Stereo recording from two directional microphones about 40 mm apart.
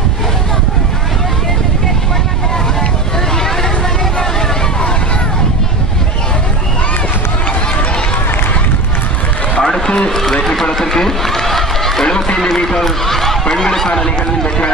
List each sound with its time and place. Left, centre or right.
9.6 s run: centre
12.8 s a sound: centre
13.5 s snicker: centre